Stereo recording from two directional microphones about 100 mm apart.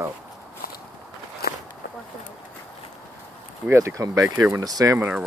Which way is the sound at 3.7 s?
35° right (ahead or behind).